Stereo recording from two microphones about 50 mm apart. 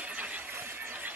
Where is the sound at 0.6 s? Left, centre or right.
Right.